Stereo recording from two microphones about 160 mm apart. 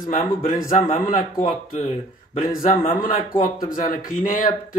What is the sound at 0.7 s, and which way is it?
A man's voice, 55° left (ahead or behind).